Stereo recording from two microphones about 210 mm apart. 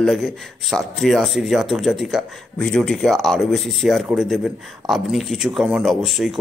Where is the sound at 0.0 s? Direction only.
Centre (ahead or behind).